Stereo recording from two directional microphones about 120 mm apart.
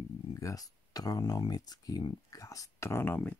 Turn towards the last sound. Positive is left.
turn(degrees=20)  # may be behind; listen again after turning